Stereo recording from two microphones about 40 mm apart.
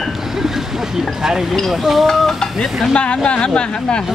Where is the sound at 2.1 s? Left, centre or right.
Centre.